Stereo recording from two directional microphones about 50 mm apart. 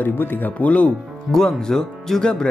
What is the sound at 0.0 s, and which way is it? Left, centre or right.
Speech, left.